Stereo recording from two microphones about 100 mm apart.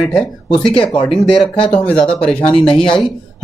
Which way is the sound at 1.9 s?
10° left (ahead or behind).